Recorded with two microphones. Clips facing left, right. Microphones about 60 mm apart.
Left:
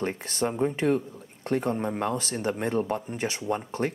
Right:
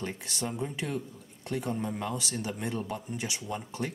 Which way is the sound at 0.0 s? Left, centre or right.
Left.